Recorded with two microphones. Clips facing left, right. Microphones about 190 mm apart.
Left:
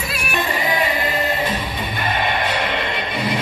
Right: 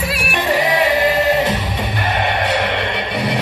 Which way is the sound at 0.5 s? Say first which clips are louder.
Right 7 dB; 80° right.